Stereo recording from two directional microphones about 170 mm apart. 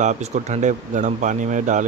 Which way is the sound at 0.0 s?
45° right (ahead or behind).